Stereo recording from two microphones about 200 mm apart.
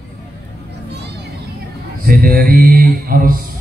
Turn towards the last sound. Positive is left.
turn(degrees=-45)  # may be behind; listen again after turning